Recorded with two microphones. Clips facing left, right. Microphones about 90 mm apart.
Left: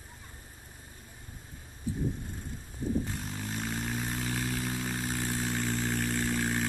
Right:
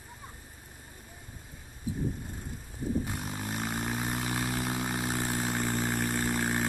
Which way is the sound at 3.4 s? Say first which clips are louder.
Right 2 dB; 55° right (ahead or behind).